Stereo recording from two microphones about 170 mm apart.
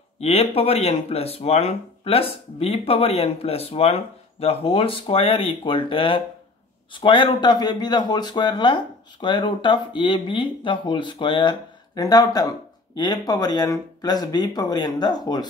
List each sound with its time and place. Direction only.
0.2 s speech: 35° left (ahead or behind)